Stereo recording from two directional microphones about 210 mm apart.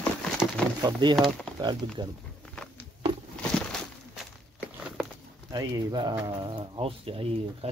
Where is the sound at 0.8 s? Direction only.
20° right (ahead or behind).